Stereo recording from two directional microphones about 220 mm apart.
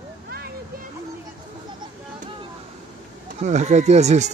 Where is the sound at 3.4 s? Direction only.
30° right (ahead or behind).